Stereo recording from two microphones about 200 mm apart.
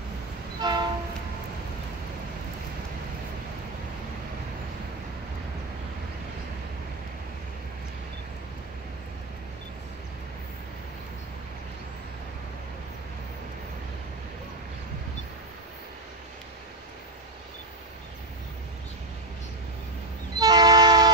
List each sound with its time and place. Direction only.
0.6 s train: 20° right (ahead or behind)
20.3 s train: 20° right (ahead or behind)